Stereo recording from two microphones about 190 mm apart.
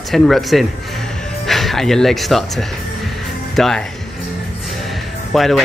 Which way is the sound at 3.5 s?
Centre (ahead or behind).